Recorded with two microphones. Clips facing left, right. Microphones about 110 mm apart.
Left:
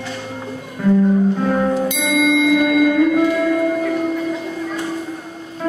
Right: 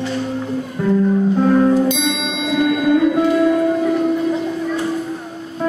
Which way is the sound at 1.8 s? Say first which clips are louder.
Left 2 dB; 20° right (ahead or behind).